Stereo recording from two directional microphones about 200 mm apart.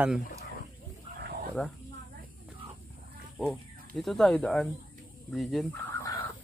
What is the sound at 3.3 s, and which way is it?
Speech, centre (ahead or behind).